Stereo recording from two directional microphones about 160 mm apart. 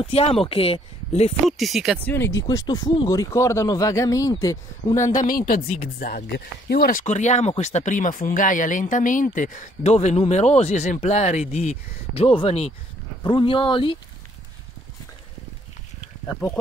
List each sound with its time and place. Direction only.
0.0 s speech: 35° left (ahead or behind)
1.4 s speech: centre (ahead or behind)
2.0 s speech: 15° left (ahead or behind)
5.1 s speech: 60° left (ahead or behind)
5.5 s speech: 70° left (ahead or behind); by 13.9 s 30° left (ahead or behind)
16.3 s speech: 15° left (ahead or behind)